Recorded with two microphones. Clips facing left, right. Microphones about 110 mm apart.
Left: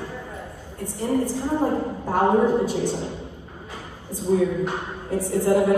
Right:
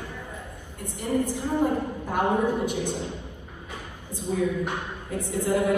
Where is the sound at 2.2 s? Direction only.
15° right (ahead or behind).